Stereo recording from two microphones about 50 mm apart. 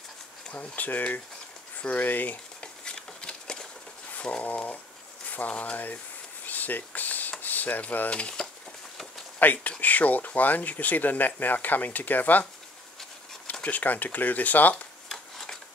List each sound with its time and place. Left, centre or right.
0.5 s speech: left
2.6 s a sound: centre
4.1 s speech: left
5.5 s speech: left
6.4 s a sound: left
8.1 s speech: left
9.4 s speech: left
13.5 s speech: left
15.0 s a sound: centre